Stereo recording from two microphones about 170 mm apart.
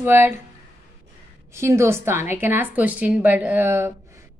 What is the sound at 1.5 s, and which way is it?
A woman's voice, 15° right (ahead or behind).